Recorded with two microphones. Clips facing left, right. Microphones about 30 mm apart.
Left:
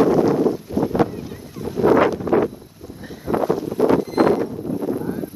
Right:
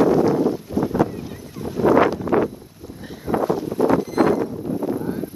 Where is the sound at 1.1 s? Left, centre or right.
Centre.